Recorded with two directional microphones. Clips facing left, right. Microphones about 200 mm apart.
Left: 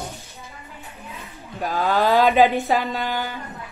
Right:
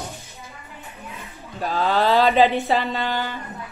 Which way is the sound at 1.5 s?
10° left (ahead or behind).